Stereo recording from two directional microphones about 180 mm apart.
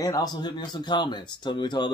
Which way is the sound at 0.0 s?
20° left (ahead or behind).